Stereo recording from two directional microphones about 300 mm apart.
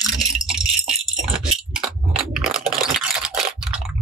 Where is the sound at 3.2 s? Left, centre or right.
Centre.